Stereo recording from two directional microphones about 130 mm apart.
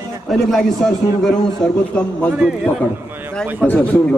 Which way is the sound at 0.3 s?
5° left (ahead or behind).